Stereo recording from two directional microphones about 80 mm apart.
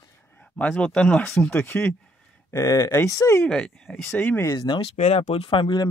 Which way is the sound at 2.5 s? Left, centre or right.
Left.